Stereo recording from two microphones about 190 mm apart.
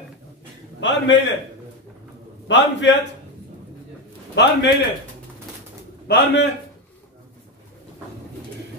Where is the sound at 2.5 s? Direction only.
70° left (ahead or behind).